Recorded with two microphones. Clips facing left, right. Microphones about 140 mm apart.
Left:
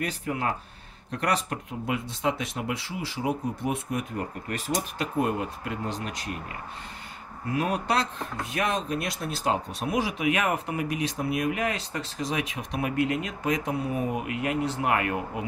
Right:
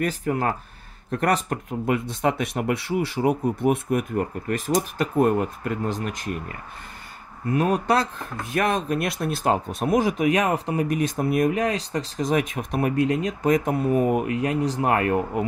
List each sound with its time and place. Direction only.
0.0 s speech: 45° right (ahead or behind)
4.5 s speech: 45° right (ahead or behind)
7.5 s speech: 45° right (ahead or behind)
12.9 s speech: 35° right (ahead or behind); by 14.2 s 50° right (ahead or behind)
14.2 s speech: 35° right (ahead or behind)